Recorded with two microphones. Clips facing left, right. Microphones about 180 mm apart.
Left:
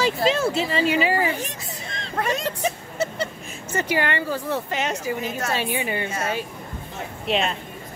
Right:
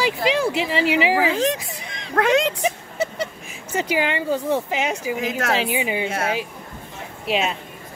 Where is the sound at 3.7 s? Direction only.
15° right (ahead or behind).